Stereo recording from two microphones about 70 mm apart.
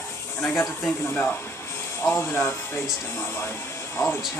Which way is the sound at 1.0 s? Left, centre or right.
Left.